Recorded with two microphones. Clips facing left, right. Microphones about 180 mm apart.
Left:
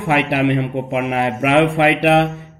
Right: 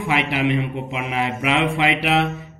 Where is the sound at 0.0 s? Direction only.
60° left (ahead or behind).